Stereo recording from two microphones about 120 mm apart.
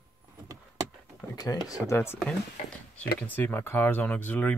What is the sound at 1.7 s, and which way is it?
Speech, 20° left (ahead or behind).